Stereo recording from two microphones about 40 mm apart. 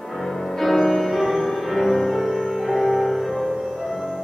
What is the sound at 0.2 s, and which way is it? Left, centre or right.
Music, centre.